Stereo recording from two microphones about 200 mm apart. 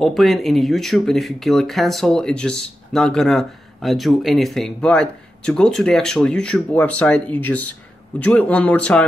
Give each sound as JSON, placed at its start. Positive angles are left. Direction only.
{"t": 0.0, "sound": "speech", "side_deg": 0}